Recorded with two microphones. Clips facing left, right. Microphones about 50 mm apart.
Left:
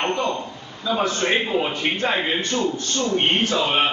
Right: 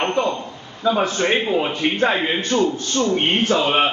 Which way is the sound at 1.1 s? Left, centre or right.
Centre.